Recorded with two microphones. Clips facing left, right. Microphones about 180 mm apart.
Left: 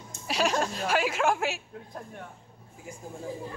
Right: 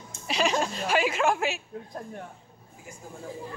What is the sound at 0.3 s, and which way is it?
A woman's voice, centre (ahead or behind).